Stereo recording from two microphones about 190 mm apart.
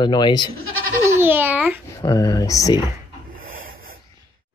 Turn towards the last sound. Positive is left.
turn(degrees=-50)  # may be behind; listen again after turning